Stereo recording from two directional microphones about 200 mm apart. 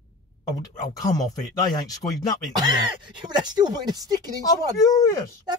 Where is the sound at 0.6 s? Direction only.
20° left (ahead or behind).